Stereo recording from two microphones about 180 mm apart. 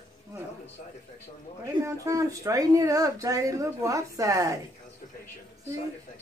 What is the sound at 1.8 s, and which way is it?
Speech, 15° right (ahead or behind).